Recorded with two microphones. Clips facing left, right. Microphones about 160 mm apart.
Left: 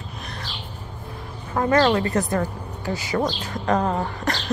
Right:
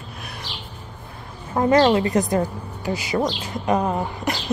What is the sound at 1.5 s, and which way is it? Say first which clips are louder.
A woman's voice: right 2 dB; 20° right (ahead or behind).